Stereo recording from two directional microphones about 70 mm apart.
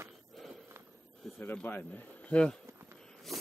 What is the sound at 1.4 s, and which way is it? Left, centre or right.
Speech, left.